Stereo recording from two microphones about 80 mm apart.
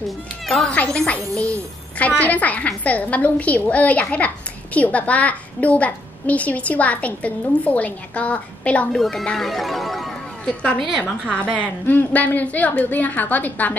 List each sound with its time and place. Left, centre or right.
0.5 s a woman's voice: centre
8.9 s a woman's voice: centre
11.2 s a child's voice: centre